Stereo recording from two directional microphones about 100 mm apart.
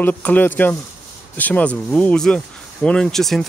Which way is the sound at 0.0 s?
15° left (ahead or behind).